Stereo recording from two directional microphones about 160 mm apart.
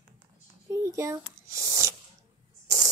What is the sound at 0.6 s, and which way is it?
A child's voice, 20° right (ahead or behind).